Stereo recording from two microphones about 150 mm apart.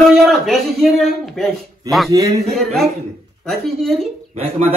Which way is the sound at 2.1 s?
20° right (ahead or behind).